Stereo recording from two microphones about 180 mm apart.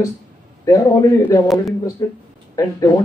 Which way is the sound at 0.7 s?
20° left (ahead or behind).